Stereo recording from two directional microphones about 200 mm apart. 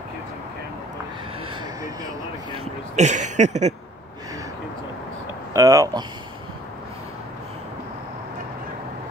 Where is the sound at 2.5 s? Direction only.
35° right (ahead or behind).